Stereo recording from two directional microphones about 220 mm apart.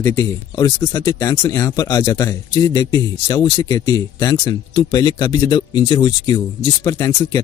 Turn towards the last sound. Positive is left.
turn(degrees=15)  # may be behind; listen again after turning